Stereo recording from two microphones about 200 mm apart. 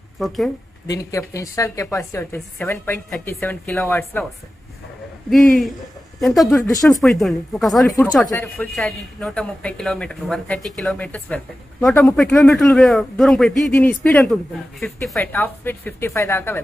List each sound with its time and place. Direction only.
0.8 s a woman's voice: 15° left (ahead or behind)
5.3 s speech: centre (ahead or behind)
6.6 s a woman's voice: 15° left (ahead or behind)
6.9 s a woman's voice: centre (ahead or behind)